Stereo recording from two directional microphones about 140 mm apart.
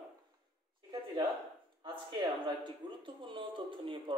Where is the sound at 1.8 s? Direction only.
35° right (ahead or behind).